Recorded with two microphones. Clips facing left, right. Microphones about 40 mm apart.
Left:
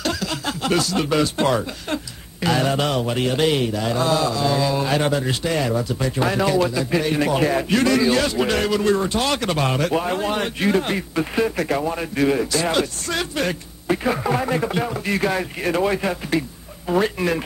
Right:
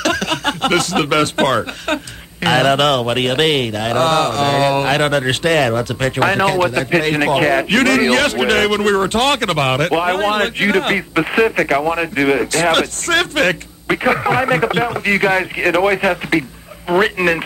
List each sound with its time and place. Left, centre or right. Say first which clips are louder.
0.0 s speech: right 7 dB; right